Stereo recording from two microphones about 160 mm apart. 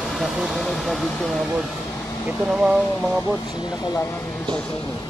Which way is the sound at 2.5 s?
5° right (ahead or behind).